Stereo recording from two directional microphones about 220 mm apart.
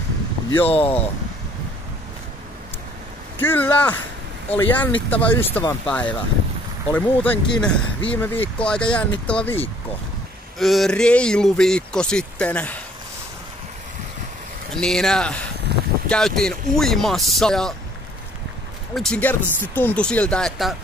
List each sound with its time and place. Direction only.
0.7 s speech: 25° left (ahead or behind)
3.3 s speech: 10° left (ahead or behind)
14.8 s speech: centre (ahead or behind)
18.9 s speech: 5° left (ahead or behind)